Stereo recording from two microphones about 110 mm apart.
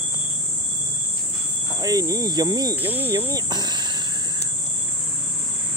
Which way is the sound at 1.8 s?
35° right (ahead or behind).